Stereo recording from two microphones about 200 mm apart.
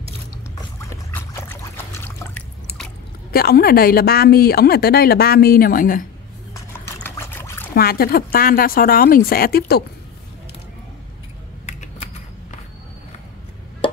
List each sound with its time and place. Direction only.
0.8 s a sound: 10° left (ahead or behind)
3.3 s a woman's voice: 50° left (ahead or behind)
6.5 s pour: 10° left (ahead or behind)
7.7 s a woman's voice: 50° left (ahead or behind)
11.6 s typing: 35° left (ahead or behind)